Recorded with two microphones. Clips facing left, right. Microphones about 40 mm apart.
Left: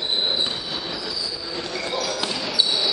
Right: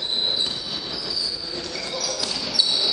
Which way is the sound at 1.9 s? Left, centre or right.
Left.